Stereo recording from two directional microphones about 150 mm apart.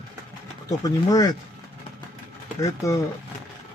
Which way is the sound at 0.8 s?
25° left (ahead or behind).